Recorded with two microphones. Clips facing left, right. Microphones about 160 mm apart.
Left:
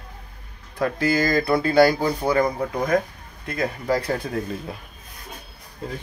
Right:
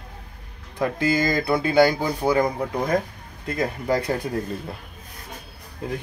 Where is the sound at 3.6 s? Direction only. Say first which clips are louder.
Even; 20° right (ahead or behind).